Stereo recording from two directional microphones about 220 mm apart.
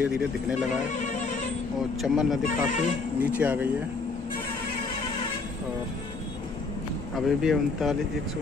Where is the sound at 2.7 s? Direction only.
35° left (ahead or behind).